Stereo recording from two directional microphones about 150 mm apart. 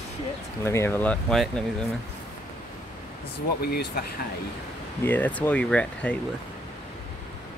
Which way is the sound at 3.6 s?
90° left.